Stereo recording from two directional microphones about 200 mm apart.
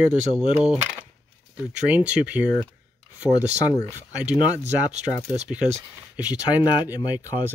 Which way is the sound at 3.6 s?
15° left (ahead or behind).